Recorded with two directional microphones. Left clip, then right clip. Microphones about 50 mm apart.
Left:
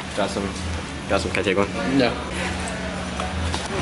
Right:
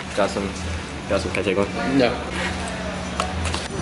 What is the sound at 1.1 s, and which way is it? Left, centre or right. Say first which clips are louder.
Speech: left 1 dB; centre.